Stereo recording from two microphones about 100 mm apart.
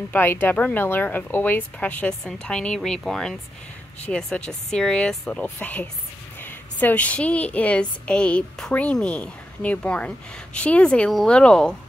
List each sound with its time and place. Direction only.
0.1 s a woman's voice: 20° left (ahead or behind)